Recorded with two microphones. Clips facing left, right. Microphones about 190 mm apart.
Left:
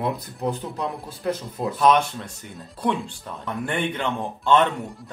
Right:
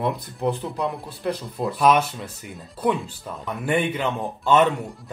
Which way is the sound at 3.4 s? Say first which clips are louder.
Right 3 dB; 5° right (ahead or behind).